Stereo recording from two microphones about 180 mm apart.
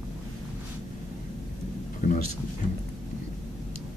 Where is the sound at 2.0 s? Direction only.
45° left (ahead or behind).